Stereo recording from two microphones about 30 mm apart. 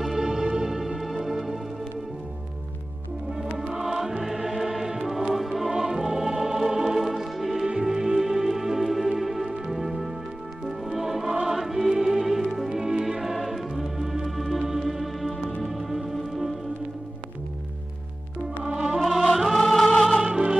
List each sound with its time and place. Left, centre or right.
0.0 s music: centre
0.7 s music: centre
3.5 s music: centre
5.7 s music: centre
7.6 s music: right; by 16.5 s centre
18.6 s music: centre
18.9 s music: centre
19.6 s music: centre
20.2 s music: right